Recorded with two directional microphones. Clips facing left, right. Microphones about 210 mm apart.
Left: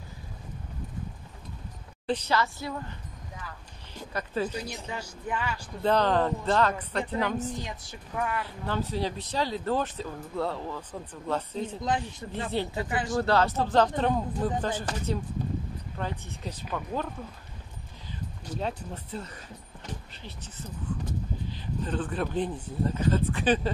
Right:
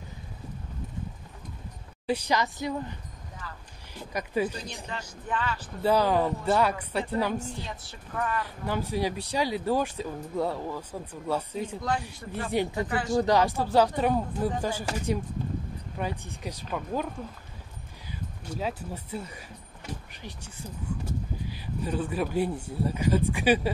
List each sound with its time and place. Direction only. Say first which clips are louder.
2.0 s speech: even; 15° right (ahead or behind)
4.1 s speech: right 2 dB; 15° right (ahead or behind)
4.8 s a woman's voice: left 1 dB; 10° left (ahead or behind)
5.8 s speech: right 1 dB; 10° right (ahead or behind)
7.5 s a woman's voice: left 2 dB; 15° left (ahead or behind)
8.6 s speech: right 2 dB; 10° right (ahead or behind)
12.2 s speech: right 6 dB; 20° left (ahead or behind)
13.1 s speech: right 2 dB; 15° right (ahead or behind)
18.6 s speech: right 1 dB; 5° right (ahead or behind)